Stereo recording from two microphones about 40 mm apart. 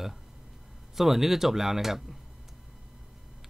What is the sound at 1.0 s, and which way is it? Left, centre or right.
Speech, centre.